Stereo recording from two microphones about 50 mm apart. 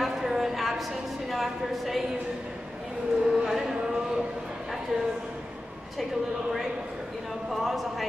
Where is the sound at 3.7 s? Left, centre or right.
Centre.